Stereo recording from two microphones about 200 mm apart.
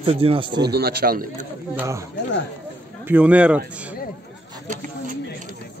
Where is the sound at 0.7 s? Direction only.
50° right (ahead or behind).